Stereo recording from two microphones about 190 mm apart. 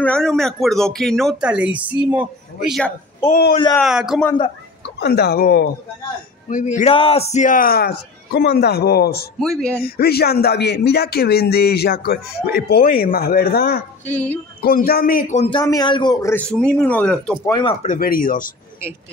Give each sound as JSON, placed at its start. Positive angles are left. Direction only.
{"t": 0.0, "sound": "speech", "side_deg": 5}
{"t": 4.9, "sound": "speech", "side_deg": 60}
{"t": 6.5, "sound": "a man's voice", "side_deg": 40}
{"t": 9.4, "sound": "speech", "side_deg": 5}
{"t": 9.8, "sound": "speech", "side_deg": 55}
{"t": 14.0, "sound": "a man's voice", "side_deg": 10}
{"t": 14.6, "sound": "a man's voice", "side_deg": 50}
{"t": 15.3, "sound": "speech", "side_deg": 30}
{"t": 15.6, "sound": "a man's voice", "side_deg": 20}
{"t": 17.5, "sound": "speech", "side_deg": 25}
{"t": 17.8, "sound": "a man's voice", "side_deg": 50}